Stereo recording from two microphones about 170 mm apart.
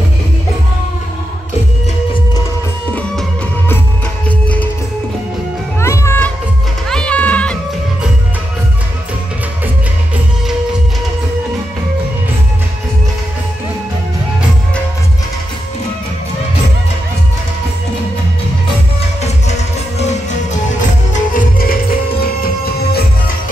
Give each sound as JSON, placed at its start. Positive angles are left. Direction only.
{"t": 2.9, "sound": "music", "side_deg": 10}
{"t": 5.8, "sound": "music", "side_deg": 15}
{"t": 20.0, "sound": "music", "side_deg": 40}